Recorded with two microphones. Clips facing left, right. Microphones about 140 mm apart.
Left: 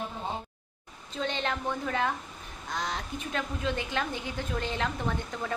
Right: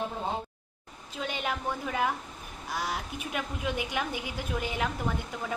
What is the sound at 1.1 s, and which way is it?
A woman's voice, 10° right (ahead or behind).